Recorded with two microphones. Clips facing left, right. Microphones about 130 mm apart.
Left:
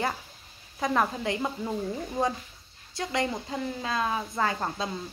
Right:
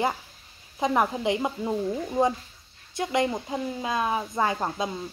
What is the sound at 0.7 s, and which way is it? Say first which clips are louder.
A woman's voice: right 3 dB; 20° right (ahead or behind).